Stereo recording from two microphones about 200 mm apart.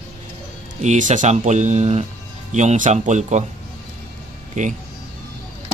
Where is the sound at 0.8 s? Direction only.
35° right (ahead or behind).